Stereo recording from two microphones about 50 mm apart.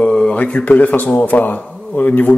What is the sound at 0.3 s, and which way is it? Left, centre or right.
Speech, left.